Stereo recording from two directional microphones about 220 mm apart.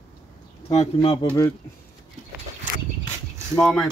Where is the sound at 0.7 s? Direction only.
25° left (ahead or behind).